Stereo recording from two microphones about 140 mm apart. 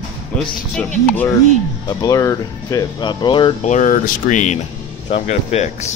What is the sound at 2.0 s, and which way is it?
Speech, 25° left (ahead or behind).